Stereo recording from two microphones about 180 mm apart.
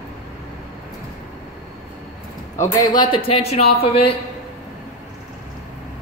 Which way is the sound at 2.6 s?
20° left (ahead or behind).